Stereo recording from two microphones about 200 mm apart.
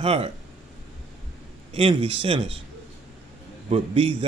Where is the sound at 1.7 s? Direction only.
25° right (ahead or behind).